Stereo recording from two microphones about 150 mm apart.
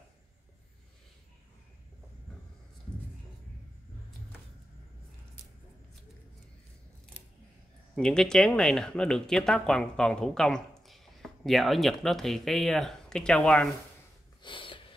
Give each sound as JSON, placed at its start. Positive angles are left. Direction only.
{"t": 7.9, "sound": "speech", "side_deg": 5}
{"t": 14.4, "sound": "snort", "side_deg": 35}